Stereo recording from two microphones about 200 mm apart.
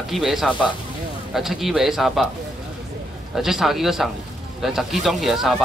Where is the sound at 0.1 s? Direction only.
Centre (ahead or behind).